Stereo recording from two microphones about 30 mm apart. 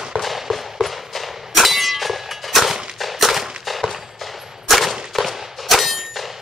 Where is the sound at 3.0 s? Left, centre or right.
Centre.